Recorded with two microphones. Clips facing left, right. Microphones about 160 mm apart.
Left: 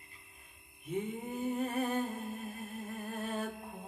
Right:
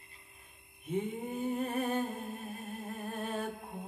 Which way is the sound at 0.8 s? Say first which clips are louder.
Right 2 dB; 30° right (ahead or behind).